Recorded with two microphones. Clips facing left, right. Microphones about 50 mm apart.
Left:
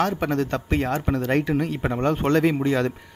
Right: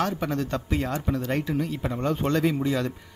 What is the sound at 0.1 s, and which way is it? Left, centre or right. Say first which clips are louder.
Speech: left 4 dB; left.